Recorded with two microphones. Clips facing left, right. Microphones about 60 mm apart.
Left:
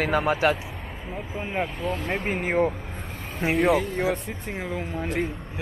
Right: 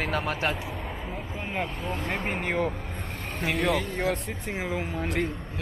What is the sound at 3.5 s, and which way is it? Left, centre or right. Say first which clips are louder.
Speech: left 5 dB; centre.